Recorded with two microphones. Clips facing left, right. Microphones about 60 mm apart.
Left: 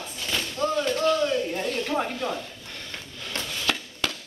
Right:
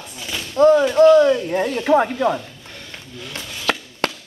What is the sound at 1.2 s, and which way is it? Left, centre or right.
Speech, right.